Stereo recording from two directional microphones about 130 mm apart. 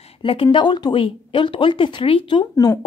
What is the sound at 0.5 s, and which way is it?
A woman's voice, 35° left (ahead or behind).